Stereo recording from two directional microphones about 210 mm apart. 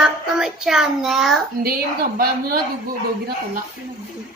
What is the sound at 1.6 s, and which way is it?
A woman's voice, 45° right (ahead or behind).